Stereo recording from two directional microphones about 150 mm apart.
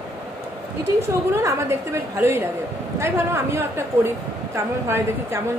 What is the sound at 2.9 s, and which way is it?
Speech, 15° right (ahead or behind).